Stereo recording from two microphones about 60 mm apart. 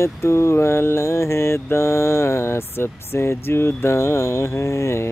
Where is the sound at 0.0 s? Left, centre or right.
Left.